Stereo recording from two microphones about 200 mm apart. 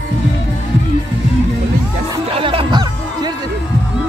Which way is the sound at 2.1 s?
25° right (ahead or behind).